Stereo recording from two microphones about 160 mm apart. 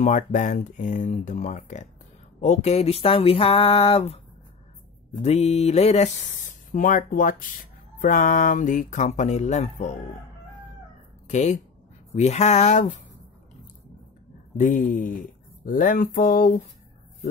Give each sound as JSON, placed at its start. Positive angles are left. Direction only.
{"t": 0.0, "sound": "speech", "side_deg": 50}
{"t": 2.4, "sound": "a sound", "side_deg": 45}
{"t": 5.1, "sound": "speech", "side_deg": 40}
{"t": 11.2, "sound": "speech", "side_deg": 45}
{"t": 14.6, "sound": "speech", "side_deg": 55}